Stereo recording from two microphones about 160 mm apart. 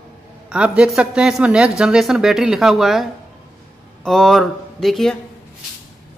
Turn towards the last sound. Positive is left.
turn(degrees=0)  # may be behind; listen again after turning